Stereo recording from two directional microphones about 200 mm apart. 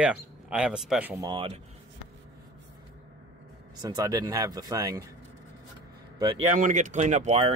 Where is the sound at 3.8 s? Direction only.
20° right (ahead or behind).